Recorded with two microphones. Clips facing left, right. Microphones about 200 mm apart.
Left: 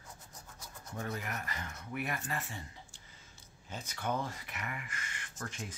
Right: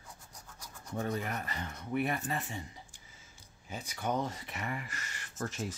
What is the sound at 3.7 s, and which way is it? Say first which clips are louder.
Speech: right 2 dB; 15° right (ahead or behind).